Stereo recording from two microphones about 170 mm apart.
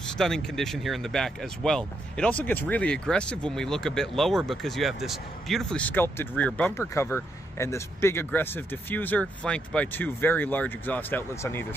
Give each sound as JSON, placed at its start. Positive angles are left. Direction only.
{"t": 0.2, "sound": "speech", "side_deg": 5}